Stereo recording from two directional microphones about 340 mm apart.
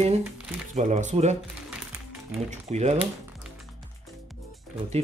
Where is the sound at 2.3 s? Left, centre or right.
Centre.